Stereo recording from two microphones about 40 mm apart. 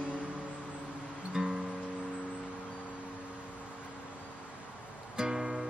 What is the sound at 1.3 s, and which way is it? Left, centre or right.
Music, centre.